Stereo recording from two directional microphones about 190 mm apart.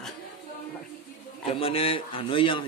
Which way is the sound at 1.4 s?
30° left (ahead or behind).